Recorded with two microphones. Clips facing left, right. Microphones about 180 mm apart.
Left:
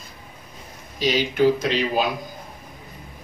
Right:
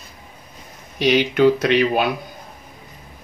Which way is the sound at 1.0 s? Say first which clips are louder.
Right 4 dB; 65° right (ahead or behind).